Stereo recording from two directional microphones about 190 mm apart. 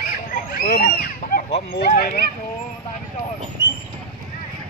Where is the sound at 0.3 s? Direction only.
50° left (ahead or behind).